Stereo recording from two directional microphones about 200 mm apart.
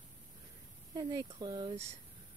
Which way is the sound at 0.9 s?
20° right (ahead or behind).